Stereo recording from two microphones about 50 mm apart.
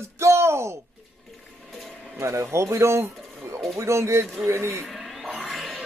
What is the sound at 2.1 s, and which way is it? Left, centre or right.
Speech, right.